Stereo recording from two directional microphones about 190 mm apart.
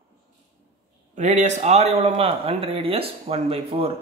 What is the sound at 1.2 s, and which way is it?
Speech, 40° right (ahead or behind).